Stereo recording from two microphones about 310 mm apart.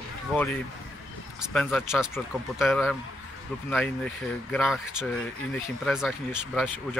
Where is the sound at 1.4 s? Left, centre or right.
Centre.